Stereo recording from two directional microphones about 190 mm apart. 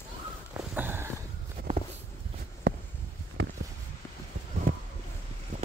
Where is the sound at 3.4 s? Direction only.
75° right (ahead or behind).